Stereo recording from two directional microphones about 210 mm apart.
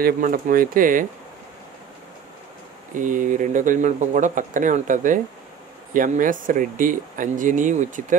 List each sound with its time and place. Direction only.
0.0 s speech: 40° right (ahead or behind)
3.0 s speech: 35° right (ahead or behind)